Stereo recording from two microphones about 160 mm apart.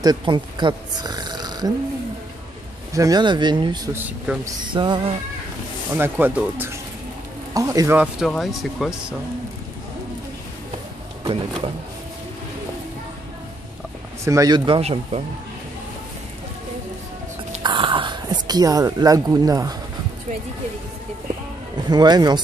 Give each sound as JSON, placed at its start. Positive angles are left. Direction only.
{"t": 0.0, "sound": "speech", "side_deg": -30}
{"t": 2.9, "sound": "speech", "side_deg": -20}
{"t": 3.9, "sound": "speech", "side_deg": -10}
{"t": 4.6, "sound": "speech", "side_deg": -30}
{"t": 5.9, "sound": "speech", "side_deg": -10}
{"t": 8.0, "sound": "speech", "side_deg": 0}
{"t": 14.2, "sound": "speech", "side_deg": -20}
{"t": 14.8, "sound": "speech", "side_deg": -40}
{"t": 17.6, "sound": "a sound", "side_deg": -30}
{"t": 21.7, "sound": "speech", "side_deg": -25}